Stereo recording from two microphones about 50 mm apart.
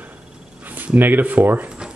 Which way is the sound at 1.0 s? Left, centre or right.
Right.